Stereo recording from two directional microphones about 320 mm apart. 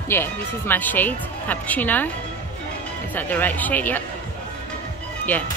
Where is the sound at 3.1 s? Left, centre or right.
Centre.